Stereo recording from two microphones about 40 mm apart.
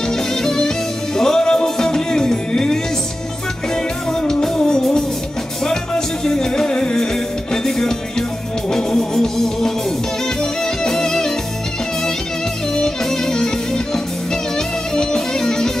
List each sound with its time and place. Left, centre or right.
0.4 s music: centre
4.2 s music: centre
10.8 s music: centre
12.7 s music: centre
15.0 s music: centre